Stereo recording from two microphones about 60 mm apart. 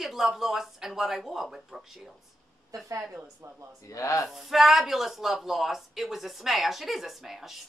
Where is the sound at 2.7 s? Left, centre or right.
Right.